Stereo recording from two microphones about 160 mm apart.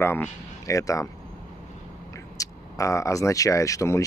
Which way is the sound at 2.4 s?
20° left (ahead or behind).